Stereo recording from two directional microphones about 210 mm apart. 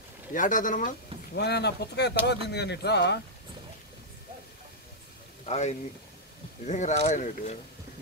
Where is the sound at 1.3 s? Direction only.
50° left (ahead or behind).